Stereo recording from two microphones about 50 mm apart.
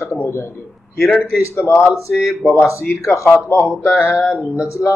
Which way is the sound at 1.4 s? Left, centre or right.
Left.